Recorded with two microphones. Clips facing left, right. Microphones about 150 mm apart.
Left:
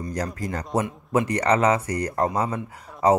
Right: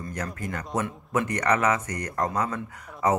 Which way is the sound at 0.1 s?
35° left (ahead or behind).